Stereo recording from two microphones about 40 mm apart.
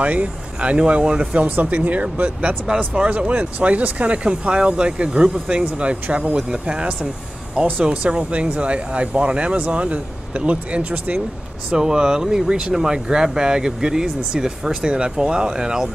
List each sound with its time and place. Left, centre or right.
0.0 s speech: right
1.4 s speech: right
11.7 s speech: centre